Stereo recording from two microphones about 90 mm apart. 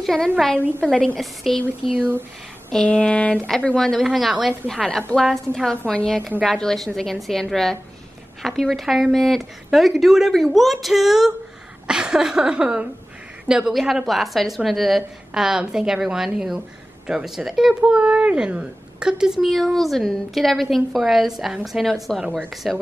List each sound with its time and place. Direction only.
0.0 s a woman's voice: 5° left (ahead or behind)
2.0 s speech: 25° right (ahead or behind)
2.7 s a woman's voice: 10° left (ahead or behind)